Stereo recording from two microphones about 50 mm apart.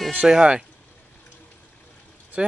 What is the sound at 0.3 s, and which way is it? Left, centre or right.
Speech, centre.